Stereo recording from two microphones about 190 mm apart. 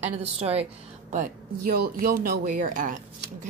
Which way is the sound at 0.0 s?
35° right (ahead or behind).